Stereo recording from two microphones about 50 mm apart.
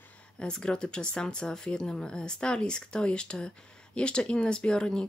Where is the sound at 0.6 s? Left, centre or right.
Centre.